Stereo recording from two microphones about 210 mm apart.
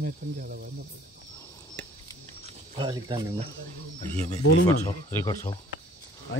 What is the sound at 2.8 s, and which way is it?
Speech, 20° right (ahead or behind).